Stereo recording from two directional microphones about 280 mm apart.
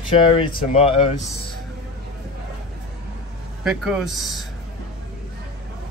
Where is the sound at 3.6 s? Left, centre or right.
Centre.